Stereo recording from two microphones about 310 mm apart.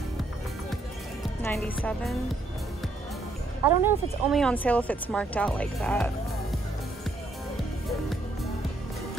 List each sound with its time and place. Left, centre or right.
1.4 s speech: centre
3.6 s speech: centre